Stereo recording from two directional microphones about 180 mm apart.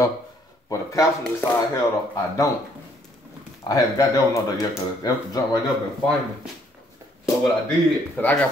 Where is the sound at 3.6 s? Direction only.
20° left (ahead or behind).